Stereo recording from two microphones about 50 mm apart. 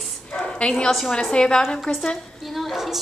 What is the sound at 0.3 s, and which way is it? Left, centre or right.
Bow-wow, centre.